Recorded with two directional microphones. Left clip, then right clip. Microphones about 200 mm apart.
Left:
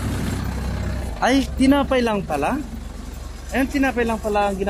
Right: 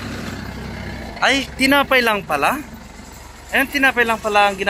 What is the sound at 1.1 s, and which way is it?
Speech, 25° left (ahead or behind).